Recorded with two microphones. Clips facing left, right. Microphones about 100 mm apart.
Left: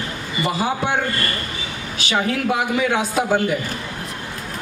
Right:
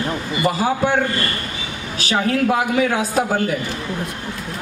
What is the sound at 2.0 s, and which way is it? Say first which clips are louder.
A woman's voice: right 3 dB; 40° right (ahead or behind).